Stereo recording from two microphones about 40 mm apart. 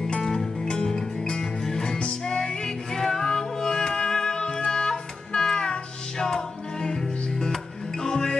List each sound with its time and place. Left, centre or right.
0.0 s music: centre